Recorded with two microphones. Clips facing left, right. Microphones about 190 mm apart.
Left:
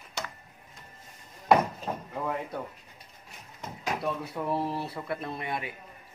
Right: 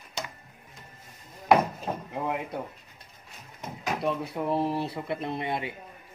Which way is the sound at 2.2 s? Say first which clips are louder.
Right 1 dB; 20° right (ahead or behind).